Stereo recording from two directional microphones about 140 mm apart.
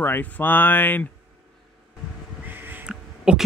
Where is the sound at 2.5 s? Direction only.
15° right (ahead or behind).